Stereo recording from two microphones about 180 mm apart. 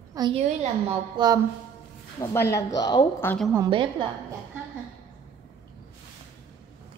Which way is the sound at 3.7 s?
30° right (ahead or behind).